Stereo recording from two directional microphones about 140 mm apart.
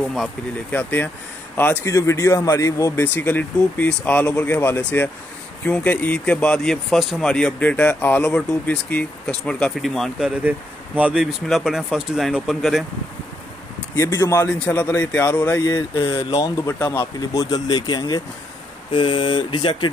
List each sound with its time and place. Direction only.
0.7 s speech: 10° left (ahead or behind)
13.9 s a man's voice: 20° left (ahead or behind)
15.9 s speech: 35° left (ahead or behind)
16.6 s a man's voice: 15° left (ahead or behind); by 19.9 s 35° left (ahead or behind)